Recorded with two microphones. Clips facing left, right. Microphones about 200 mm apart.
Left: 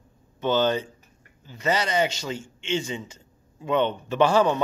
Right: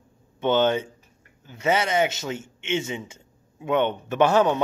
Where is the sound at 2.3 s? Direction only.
25° right (ahead or behind).